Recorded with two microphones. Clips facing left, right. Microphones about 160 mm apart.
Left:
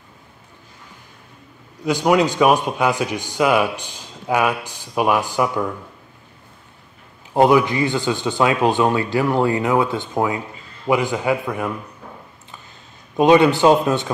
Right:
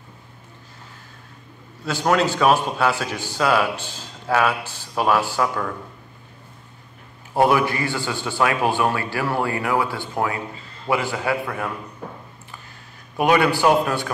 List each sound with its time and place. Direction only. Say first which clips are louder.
1.9 s speech: left 3 dB; 15° left (ahead or behind)
7.3 s a man's voice: left 4 dB; 20° left (ahead or behind)
13.1 s a man's voice: left 5 dB; 20° left (ahead or behind)